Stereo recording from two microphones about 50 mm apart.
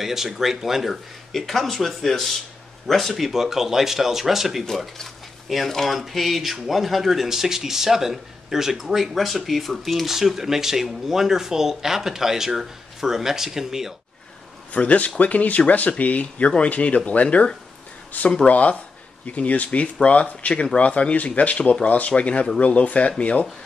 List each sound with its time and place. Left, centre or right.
0.0 s speech: centre
4.6 s speech: centre
14.7 s speech: left